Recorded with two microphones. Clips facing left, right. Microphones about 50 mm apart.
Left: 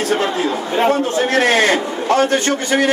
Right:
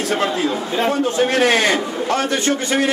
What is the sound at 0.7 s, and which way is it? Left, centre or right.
A man's voice, left.